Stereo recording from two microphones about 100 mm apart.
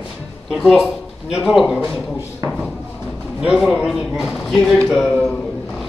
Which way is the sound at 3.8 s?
5° right (ahead or behind).